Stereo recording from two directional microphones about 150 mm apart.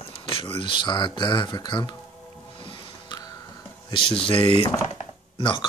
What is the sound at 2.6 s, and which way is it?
Music, 35° left (ahead or behind).